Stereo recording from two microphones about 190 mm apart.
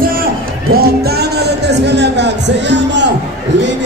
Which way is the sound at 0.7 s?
55° right (ahead or behind).